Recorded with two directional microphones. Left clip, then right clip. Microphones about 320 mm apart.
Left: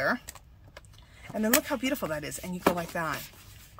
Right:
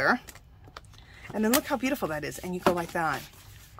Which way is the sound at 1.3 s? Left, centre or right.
Centre.